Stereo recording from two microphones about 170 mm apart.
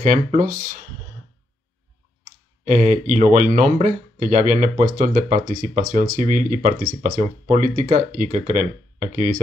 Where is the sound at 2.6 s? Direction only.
45° right (ahead or behind).